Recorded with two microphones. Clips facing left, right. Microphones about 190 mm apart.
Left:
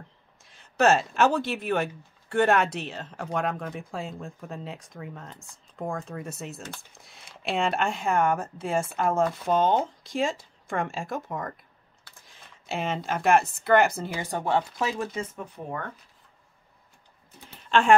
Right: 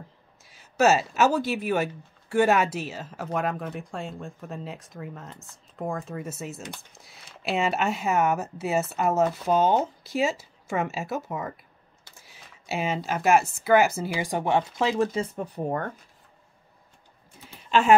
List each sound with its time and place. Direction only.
0.5 s speech: 5° right (ahead or behind)
14.8 s speech: 25° right (ahead or behind)
15.3 s speech: 40° right (ahead or behind)
17.6 s a sound: 5° right (ahead or behind)